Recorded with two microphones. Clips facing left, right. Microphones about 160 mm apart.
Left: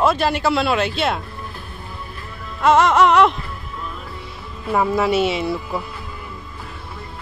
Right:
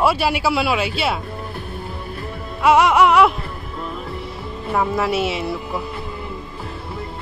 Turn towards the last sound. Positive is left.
turn(degrees=0)  # may be behind; listen again after turning